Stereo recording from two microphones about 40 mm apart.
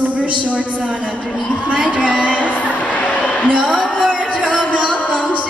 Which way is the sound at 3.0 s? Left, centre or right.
Left.